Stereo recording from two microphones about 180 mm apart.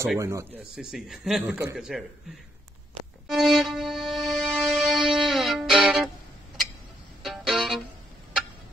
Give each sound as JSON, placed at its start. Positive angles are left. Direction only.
{"t": 0.2, "sound": "speech", "side_deg": -15}
{"t": 0.7, "sound": "speech", "side_deg": 0}
{"t": 3.3, "sound": "music", "side_deg": 0}
{"t": 7.2, "sound": "music", "side_deg": 0}